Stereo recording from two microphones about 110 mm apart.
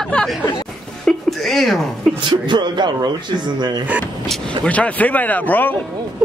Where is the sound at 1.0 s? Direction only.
Centre (ahead or behind).